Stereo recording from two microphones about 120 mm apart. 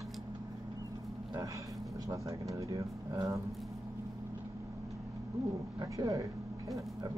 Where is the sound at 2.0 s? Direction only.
25° right (ahead or behind).